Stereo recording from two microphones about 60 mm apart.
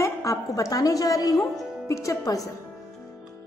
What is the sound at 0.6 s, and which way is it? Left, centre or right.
A woman's voice, left.